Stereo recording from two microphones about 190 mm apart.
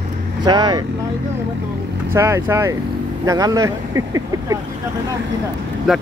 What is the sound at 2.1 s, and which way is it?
Speech, 15° right (ahead or behind).